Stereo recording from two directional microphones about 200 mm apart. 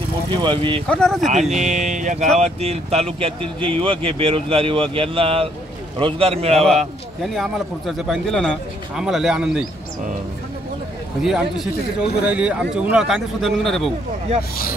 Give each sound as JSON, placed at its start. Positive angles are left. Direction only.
{"t": 0.3, "sound": "speech", "side_deg": -20}
{"t": 0.8, "sound": "a man's voice", "side_deg": 5}
{"t": 1.3, "sound": "speech", "side_deg": -35}
{"t": 7.2, "sound": "a man's voice", "side_deg": 0}
{"t": 11.2, "sound": "a man's voice", "side_deg": 0}